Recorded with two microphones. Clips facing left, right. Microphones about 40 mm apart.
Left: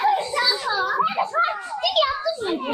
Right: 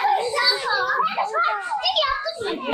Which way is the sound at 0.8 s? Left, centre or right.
Centre.